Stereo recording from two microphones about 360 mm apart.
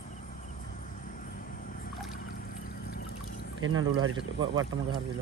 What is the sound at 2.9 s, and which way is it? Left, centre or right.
Pour, left.